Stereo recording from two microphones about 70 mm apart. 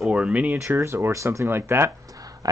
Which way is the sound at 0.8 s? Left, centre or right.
Right.